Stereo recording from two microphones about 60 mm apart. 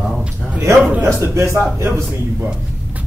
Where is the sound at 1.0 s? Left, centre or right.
Right.